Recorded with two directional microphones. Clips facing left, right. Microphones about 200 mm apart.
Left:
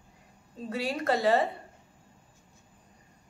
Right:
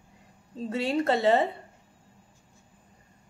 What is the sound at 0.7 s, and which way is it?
Speech, 25° right (ahead or behind).